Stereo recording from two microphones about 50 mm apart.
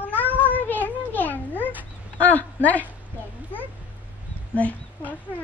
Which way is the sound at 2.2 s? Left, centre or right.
Left.